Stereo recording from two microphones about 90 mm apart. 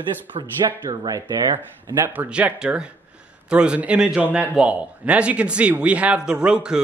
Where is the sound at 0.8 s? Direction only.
45° right (ahead or behind).